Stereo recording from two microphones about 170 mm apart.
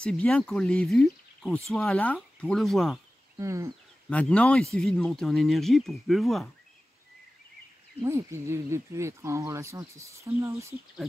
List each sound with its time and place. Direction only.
0.0 s speech: 5° left (ahead or behind)
3.3 s speech: 15° right (ahead or behind)
4.1 s speech: 10° left (ahead or behind)
8.0 s speech: 15° right (ahead or behind)